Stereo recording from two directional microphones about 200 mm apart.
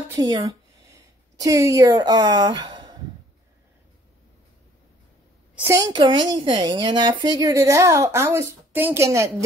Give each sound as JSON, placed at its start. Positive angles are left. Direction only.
{"t": 0.1, "sound": "speech", "side_deg": -20}
{"t": 5.6, "sound": "a woman's voice", "side_deg": -15}